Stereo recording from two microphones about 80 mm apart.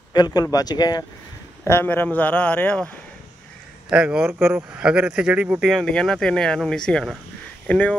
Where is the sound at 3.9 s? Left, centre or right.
Centre.